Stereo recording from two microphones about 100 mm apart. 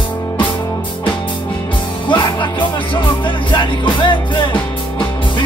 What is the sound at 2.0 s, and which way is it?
Music, 55° left (ahead or behind).